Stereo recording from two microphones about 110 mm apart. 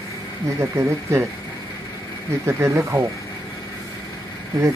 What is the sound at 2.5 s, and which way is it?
Speech, 25° right (ahead or behind).